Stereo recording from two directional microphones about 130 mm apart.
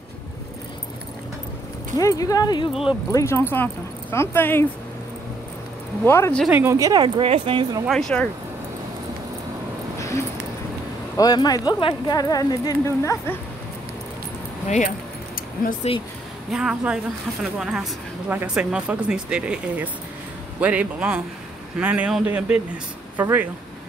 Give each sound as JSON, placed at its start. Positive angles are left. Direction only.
{"t": 2.0, "sound": "speech", "side_deg": 25}
{"t": 2.7, "sound": "a woman's voice", "side_deg": -5}
{"t": 3.1, "sound": "speech", "side_deg": 25}
{"t": 6.0, "sound": "speech", "side_deg": 20}
{"t": 6.5, "sound": "speech", "side_deg": -20}
{"t": 7.9, "sound": "speech", "side_deg": 5}
{"t": 9.9, "sound": "a sound", "side_deg": 25}
{"t": 11.1, "sound": "speech", "side_deg": 30}
{"t": 15.8, "sound": "speech", "side_deg": 55}
{"t": 16.4, "sound": "a woman's voice", "side_deg": -5}